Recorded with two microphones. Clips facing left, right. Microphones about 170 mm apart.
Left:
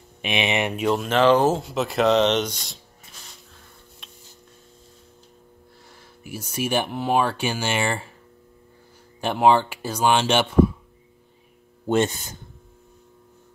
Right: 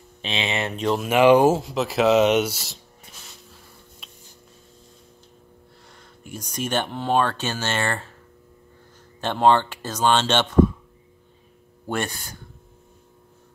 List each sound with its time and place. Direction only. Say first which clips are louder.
0.2 s speech: left 3 dB; 15° left (ahead or behind)
1.0 s speech: right 3 dB; 10° right (ahead or behind)
1.6 s speech: even; centre (ahead or behind)
5.9 s speech: left 2 dB; 5° left (ahead or behind)
9.2 s speech: even; 10° left (ahead or behind)
11.8 s speech: left 6 dB; 20° left (ahead or behind)